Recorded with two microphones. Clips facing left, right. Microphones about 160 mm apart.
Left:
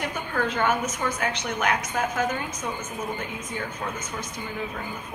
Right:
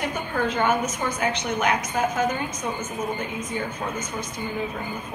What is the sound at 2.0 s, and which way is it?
Speech, centre (ahead or behind).